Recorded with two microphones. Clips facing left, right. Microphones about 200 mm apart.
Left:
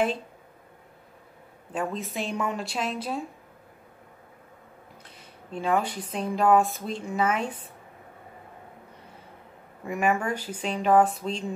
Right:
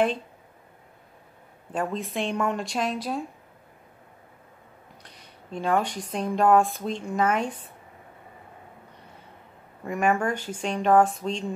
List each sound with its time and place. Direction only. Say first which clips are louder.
1.7 s speech: right 2 dB; centre (ahead or behind)
5.5 s speech: right 1 dB; 5° left (ahead or behind)
9.8 s speech: right 1 dB; 5° left (ahead or behind)